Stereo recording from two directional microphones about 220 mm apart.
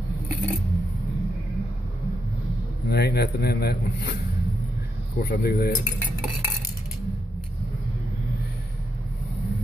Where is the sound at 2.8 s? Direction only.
45° left (ahead or behind).